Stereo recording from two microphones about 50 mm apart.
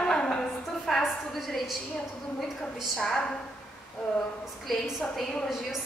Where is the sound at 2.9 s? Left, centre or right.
Centre.